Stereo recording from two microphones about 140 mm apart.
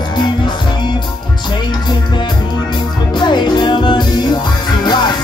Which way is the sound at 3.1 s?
35° left (ahead or behind).